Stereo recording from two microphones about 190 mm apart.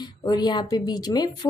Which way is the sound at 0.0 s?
20° left (ahead or behind).